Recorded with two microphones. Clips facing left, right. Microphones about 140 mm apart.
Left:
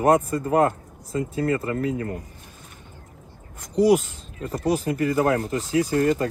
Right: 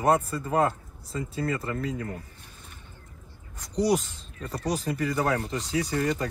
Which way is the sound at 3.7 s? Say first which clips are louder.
Left 7 dB; 10° left (ahead or behind).